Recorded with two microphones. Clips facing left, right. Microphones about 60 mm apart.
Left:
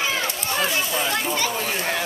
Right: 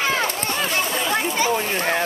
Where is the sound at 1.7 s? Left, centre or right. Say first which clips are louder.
Right 4 dB; right.